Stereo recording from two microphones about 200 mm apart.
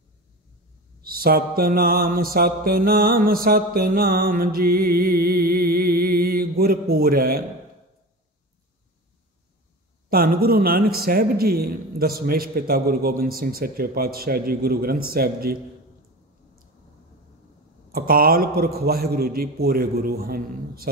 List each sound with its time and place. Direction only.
1.0 s mantra: 45° right (ahead or behind)
10.0 s mantra: 45° right (ahead or behind)
17.9 s mantra: 45° right (ahead or behind)